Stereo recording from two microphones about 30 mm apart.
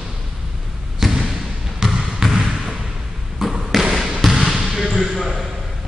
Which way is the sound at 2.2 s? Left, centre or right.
Centre.